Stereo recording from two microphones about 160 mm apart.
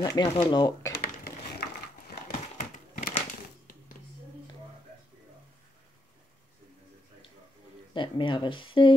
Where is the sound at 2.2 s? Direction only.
55° left (ahead or behind).